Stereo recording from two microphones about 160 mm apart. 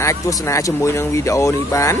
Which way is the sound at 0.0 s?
20° left (ahead or behind).